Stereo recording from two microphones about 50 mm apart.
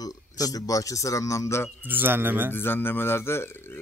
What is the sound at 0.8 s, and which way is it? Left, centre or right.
Speech, left.